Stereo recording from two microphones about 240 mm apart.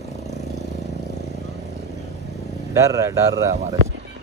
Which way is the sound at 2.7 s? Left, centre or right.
Centre.